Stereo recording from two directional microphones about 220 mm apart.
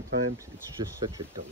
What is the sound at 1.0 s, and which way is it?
Speech, 20° right (ahead or behind).